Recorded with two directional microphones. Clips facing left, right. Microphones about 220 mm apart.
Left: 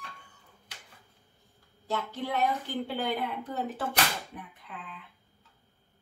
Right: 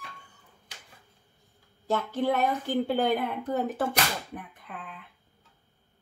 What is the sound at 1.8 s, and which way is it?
A woman's voice, 50° right (ahead or behind).